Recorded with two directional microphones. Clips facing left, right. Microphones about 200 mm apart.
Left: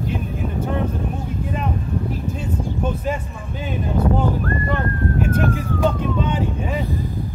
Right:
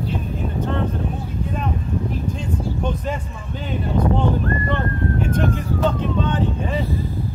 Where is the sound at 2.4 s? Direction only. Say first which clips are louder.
Even; 5° left (ahead or behind).